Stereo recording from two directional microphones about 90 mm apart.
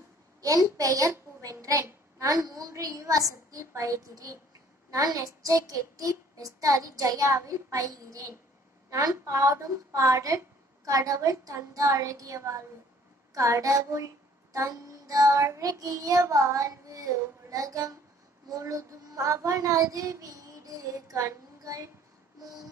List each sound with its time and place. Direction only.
0.4 s child singing: 40° right (ahead or behind)